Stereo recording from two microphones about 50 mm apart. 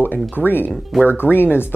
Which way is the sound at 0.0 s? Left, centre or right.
Left.